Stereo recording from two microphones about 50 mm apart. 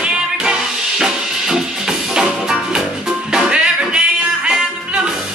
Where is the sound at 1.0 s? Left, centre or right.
Centre.